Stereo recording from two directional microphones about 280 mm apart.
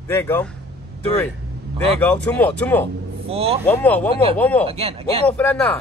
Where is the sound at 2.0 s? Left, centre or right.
Centre.